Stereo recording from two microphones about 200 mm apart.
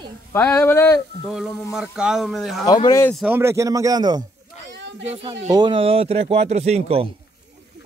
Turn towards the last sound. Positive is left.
turn(degrees=-30)  # may be behind; listen again after turning